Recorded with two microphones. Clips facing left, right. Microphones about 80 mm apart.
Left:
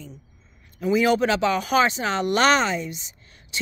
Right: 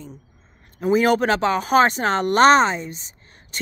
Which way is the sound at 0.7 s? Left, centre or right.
Right.